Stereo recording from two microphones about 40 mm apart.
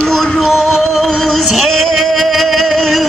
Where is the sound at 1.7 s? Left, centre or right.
Centre.